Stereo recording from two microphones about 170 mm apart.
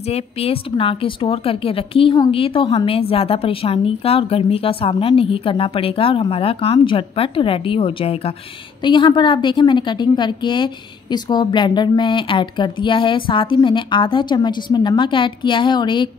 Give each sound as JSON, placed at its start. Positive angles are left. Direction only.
{"t": 0.0, "sound": "a woman's voice", "side_deg": 35}